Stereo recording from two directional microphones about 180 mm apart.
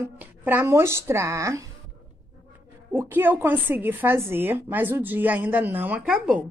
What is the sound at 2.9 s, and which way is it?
Speech, 10° right (ahead or behind).